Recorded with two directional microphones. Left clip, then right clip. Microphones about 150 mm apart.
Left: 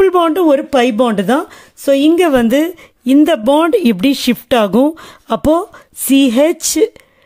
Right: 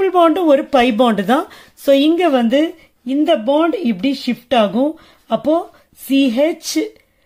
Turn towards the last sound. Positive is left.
turn(degrees=65)  # may be behind; listen again after turning